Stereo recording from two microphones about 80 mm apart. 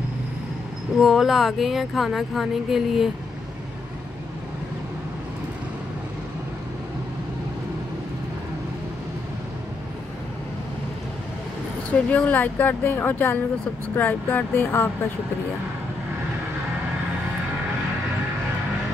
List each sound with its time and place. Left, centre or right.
1.0 s speech: centre
11.9 s speech: centre